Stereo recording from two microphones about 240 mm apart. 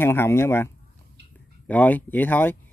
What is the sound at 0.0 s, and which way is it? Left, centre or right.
Speech, centre.